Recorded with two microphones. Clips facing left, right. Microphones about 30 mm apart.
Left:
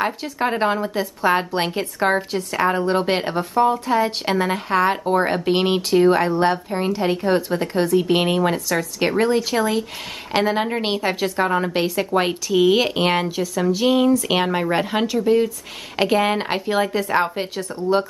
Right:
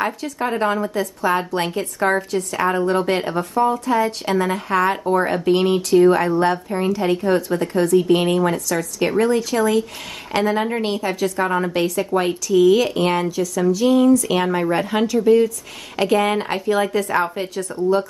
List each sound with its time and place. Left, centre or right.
0.0 s speech: left
2.8 s speech: left
11.4 s speech: centre
11.7 s speech: left
16.3 s speech: left
16.7 s speech: centre
17.1 s speech: left